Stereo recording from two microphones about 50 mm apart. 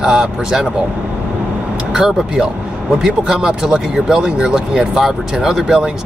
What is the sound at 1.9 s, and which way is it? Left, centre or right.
Speech, centre.